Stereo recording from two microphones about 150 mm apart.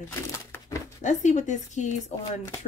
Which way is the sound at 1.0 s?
55° left (ahead or behind).